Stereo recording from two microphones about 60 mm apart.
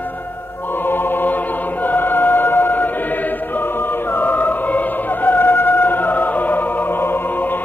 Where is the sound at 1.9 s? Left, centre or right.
Left.